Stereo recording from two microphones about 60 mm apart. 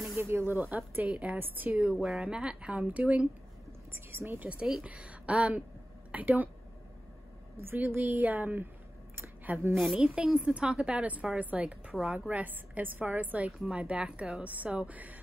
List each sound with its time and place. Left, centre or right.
0.2 s a woman's voice: right
0.6 s a woman's voice: right
1.4 s a woman's voice: right
1.8 s speech: centre
4.1 s a woman's voice: right
4.4 s a woman's voice: right
7.6 s a woman's voice: right
9.1 s a sound: right
9.9 s a woman's voice: right